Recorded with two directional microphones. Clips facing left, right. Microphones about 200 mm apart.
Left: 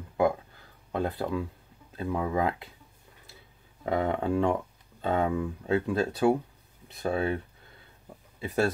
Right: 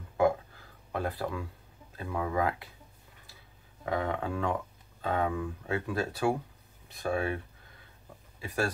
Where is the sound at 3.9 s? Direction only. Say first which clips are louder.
Left 5 dB; 25° left (ahead or behind).